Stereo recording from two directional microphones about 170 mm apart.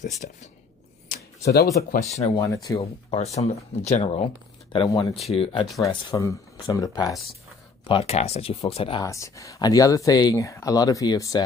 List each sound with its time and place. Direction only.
0.2 s speech: 55° left (ahead or behind)
1.1 s a sound: 70° left (ahead or behind)
2.0 s speech: 40° left (ahead or behind)
2.3 s speech: 20° left (ahead or behind)
2.8 s speech: 40° left (ahead or behind)
4.7 s speech: 25° left (ahead or behind)
6.1 s speech: 20° left (ahead or behind)
7.8 s speech: 35° left (ahead or behind)
9.0 s speech: 20° left (ahead or behind)